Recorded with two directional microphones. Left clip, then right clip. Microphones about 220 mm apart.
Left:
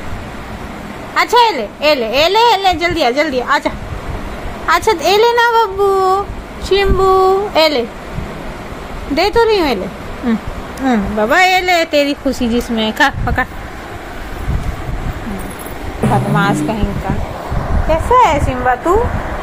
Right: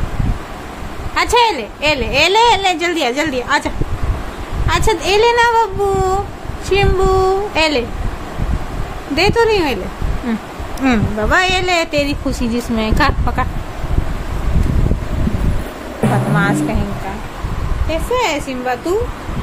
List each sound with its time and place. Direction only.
1.1 s a woman's voice: centre (ahead or behind)
9.1 s a woman's voice: 5° left (ahead or behind)
16.0 s a sound: centre (ahead or behind)
18.1 s a woman's voice: 25° right (ahead or behind)